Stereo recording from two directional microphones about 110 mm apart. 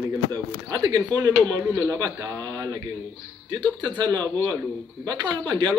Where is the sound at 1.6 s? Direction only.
20° right (ahead or behind).